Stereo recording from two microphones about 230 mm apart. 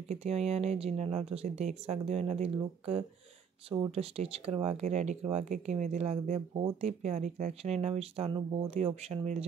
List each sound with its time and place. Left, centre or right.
0.1 s speech: right